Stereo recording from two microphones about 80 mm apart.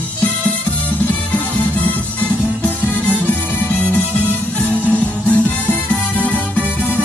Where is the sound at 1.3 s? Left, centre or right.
Left.